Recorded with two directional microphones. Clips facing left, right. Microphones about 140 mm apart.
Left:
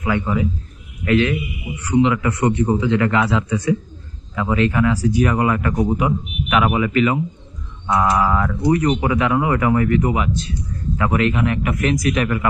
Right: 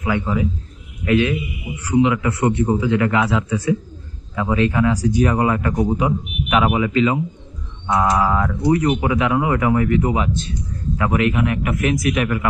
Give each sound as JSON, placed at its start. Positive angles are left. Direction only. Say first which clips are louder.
{"t": 0.0, "sound": "speech", "louder": "even", "side_deg": -10}
{"t": 4.4, "sound": "a man's voice", "louder": "even", "side_deg": -20}